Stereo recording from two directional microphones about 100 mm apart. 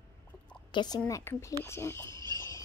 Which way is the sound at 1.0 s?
30° left (ahead or behind).